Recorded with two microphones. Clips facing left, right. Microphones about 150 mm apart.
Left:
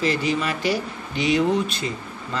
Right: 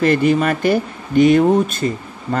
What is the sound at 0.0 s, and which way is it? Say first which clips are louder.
Speech: right 8 dB; 55° right (ahead or behind).